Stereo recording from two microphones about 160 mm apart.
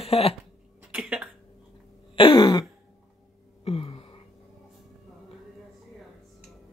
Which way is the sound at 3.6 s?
35° left (ahead or behind).